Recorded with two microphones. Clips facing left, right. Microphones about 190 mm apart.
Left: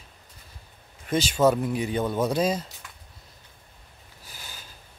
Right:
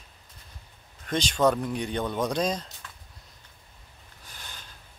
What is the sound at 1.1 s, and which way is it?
Speech, 5° left (ahead or behind).